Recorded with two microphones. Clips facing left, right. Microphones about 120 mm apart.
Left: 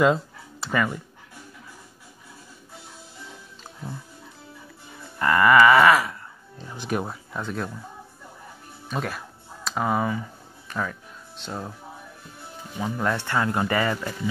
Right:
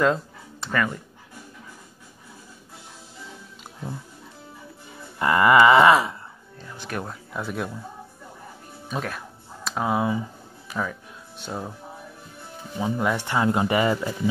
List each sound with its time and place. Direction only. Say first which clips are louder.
0.0 s speech: left 2 dB; 5° left (ahead or behind)
5.2 s a sound: even; 20° right (ahead or behind)
6.6 s speech: left 4 dB; 20° left (ahead or behind)
7.3 s speech: right 1 dB; 5° right (ahead or behind)
8.8 s speech: even; centre (ahead or behind)
12.7 s speech: right 2 dB; 15° right (ahead or behind)